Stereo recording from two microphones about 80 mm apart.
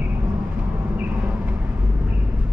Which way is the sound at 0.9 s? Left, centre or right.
Centre.